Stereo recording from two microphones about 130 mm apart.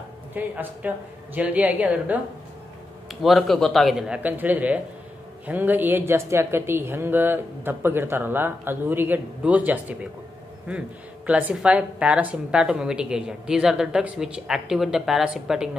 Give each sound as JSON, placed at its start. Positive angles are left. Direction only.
{"t": 0.3, "sound": "speech", "side_deg": -15}
{"t": 3.1, "sound": "a woman's voice", "side_deg": 0}
{"t": 11.2, "sound": "a woman's voice", "side_deg": -10}